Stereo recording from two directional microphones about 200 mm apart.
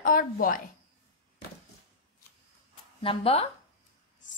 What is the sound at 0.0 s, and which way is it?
Speech, 45° left (ahead or behind).